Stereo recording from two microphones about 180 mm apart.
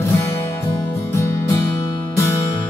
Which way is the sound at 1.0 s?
15° left (ahead or behind).